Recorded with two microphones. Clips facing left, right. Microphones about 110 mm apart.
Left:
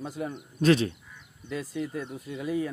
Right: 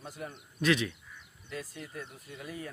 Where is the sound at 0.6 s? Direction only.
35° left (ahead or behind).